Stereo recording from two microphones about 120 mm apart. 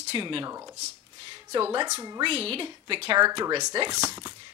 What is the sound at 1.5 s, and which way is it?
Speech, 40° right (ahead or behind).